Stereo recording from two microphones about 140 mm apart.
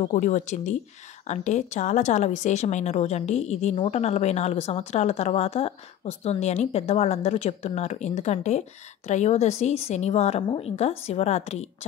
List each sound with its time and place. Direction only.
0.0 s speech: 55° left (ahead or behind)